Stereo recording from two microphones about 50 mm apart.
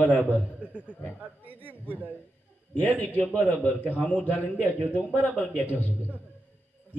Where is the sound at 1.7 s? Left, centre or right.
Right.